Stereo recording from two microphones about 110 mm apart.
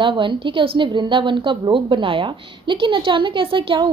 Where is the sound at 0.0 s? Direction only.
50° right (ahead or behind).